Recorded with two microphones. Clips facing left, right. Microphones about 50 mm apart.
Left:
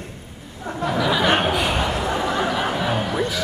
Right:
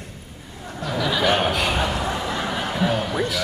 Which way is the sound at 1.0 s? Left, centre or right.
Centre.